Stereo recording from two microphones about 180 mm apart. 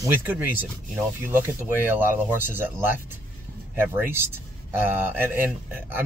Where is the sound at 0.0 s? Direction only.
10° right (ahead or behind).